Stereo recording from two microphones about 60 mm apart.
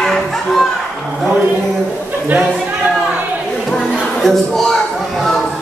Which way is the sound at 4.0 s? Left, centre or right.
Centre.